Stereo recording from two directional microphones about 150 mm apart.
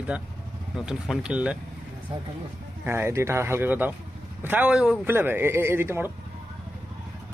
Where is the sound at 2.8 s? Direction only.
15° right (ahead or behind).